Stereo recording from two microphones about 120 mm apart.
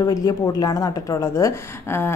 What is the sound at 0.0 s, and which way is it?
A woman's voice, 30° left (ahead or behind).